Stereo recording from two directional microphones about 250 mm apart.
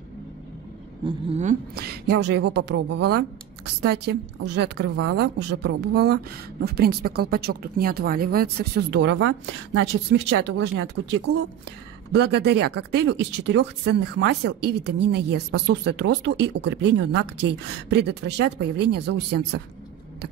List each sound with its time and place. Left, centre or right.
1.0 s speech: right
10.3 s speech: right